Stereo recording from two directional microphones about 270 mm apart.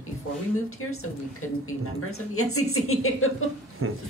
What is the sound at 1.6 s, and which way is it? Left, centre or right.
A woman's voice, left.